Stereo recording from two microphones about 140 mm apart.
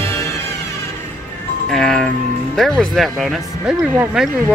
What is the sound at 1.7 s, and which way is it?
Speech, 5° left (ahead or behind).